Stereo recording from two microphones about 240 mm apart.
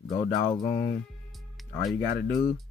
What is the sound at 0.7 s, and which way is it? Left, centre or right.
Speech, left.